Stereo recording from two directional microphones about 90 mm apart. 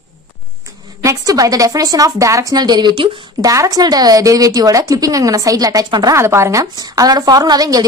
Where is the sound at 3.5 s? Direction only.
40° right (ahead or behind).